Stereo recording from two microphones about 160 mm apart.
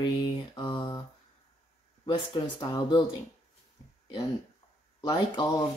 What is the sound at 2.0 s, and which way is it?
Speech, 30° left (ahead or behind).